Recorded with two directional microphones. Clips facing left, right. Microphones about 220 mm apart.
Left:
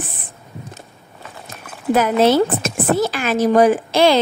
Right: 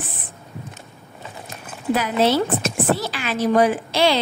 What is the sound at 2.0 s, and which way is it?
A woman's voice, 50° left (ahead or behind).